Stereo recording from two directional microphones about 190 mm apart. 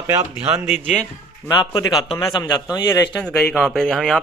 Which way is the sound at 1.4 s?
20° left (ahead or behind).